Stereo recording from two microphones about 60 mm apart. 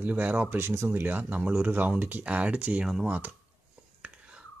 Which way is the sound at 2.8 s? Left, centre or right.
Centre.